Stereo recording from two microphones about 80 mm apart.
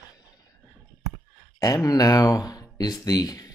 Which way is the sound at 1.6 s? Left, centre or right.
Left.